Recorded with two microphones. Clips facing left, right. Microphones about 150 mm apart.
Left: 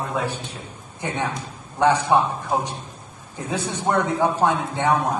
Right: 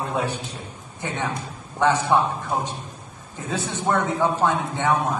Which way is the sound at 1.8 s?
15° left (ahead or behind).